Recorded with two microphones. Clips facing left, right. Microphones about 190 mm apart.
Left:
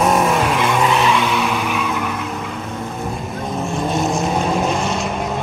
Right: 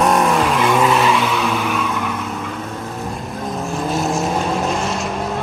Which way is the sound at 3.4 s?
Centre (ahead or behind).